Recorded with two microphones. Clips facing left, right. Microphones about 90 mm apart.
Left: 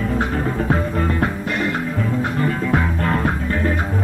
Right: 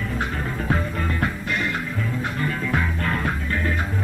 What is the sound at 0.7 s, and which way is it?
Music, 30° left (ahead or behind).